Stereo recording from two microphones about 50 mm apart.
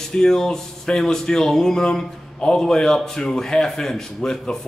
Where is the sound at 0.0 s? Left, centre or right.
Centre.